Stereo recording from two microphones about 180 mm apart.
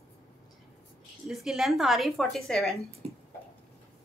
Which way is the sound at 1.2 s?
Centre (ahead or behind).